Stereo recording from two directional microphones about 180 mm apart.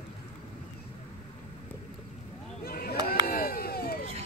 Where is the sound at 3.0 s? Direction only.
55° left (ahead or behind).